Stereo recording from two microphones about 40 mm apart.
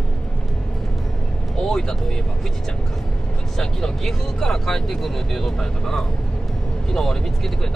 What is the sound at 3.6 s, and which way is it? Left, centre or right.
Speech, centre.